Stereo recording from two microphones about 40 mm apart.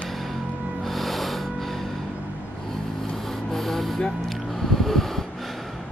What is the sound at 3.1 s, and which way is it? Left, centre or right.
Music, centre.